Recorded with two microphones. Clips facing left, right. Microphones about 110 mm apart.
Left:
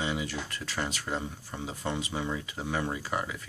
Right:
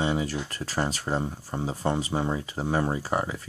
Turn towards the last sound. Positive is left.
turn(degrees=-35)  # may be behind; listen again after turning